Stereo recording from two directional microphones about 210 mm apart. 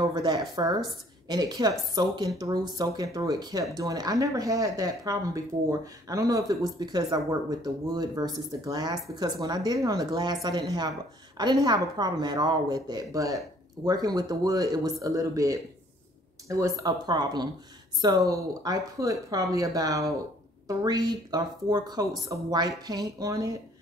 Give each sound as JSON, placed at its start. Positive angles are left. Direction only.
{"t": 0.0, "sound": "a woman's voice", "side_deg": -20}